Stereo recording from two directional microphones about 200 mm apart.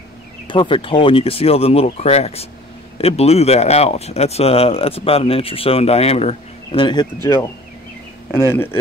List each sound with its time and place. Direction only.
0.5 s speech: 25° left (ahead or behind)